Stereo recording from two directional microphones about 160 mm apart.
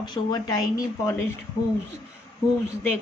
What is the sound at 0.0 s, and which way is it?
Speech, 25° left (ahead or behind).